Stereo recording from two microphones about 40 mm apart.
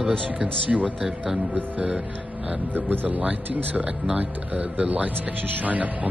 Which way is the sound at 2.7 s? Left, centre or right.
Right.